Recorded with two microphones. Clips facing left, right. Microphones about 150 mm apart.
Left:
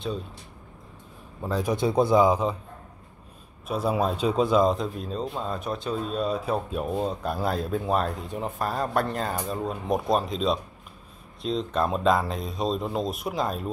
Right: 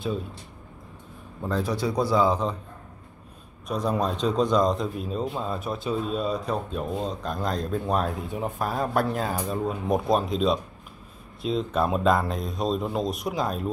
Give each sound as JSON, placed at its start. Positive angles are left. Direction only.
{"t": 1.4, "sound": "a man's voice", "side_deg": 10}
{"t": 1.7, "sound": "a man's voice", "side_deg": 20}
{"t": 3.6, "sound": "speech", "side_deg": 5}